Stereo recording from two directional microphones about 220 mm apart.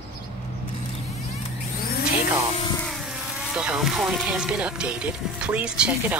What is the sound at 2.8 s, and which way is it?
Vehicle, centre (ahead or behind).